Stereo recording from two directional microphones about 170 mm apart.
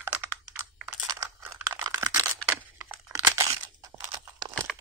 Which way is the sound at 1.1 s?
20° right (ahead or behind).